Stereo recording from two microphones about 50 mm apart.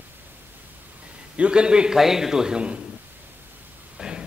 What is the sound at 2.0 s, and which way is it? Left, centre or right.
Speech, centre.